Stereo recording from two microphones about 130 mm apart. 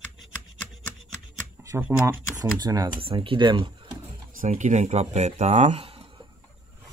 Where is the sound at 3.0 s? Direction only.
45° right (ahead or behind).